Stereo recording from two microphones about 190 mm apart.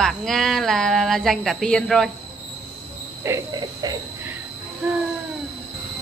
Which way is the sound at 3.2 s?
20° right (ahead or behind).